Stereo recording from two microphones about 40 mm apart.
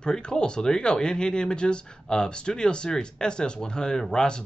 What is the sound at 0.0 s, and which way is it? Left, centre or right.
Speech, centre.